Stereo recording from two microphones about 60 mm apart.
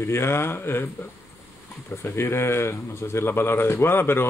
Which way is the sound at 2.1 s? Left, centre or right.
Left.